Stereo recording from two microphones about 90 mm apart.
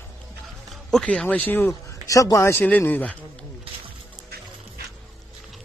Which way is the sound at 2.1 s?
40° left (ahead or behind).